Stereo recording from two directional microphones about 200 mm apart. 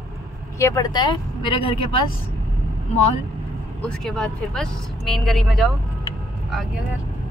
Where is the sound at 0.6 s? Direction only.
15° left (ahead or behind).